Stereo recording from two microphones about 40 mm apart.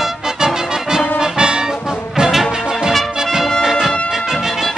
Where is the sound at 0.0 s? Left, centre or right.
Centre.